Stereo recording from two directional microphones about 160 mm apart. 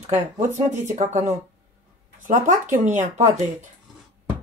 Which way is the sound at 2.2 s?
55° right (ahead or behind).